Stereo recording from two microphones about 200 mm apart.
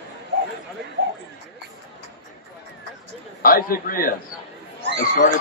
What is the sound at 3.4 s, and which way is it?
Speech, 45° left (ahead or behind).